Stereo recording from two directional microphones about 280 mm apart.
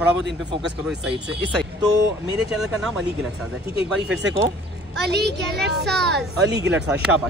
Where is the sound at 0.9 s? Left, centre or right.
Centre.